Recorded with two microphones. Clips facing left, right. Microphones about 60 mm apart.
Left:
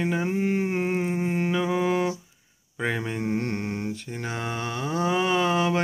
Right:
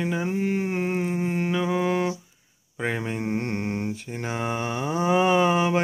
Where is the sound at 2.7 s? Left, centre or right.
Centre.